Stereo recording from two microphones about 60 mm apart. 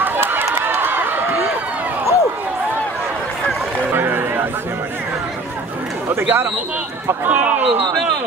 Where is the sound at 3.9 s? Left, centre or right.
Right.